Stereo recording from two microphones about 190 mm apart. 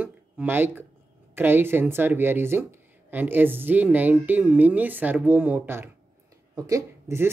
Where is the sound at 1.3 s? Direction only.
10° right (ahead or behind).